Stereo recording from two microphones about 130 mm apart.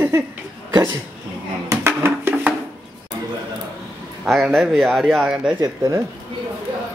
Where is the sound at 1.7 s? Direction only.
20° right (ahead or behind).